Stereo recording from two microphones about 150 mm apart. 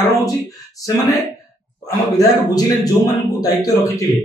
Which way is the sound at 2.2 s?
25° left (ahead or behind).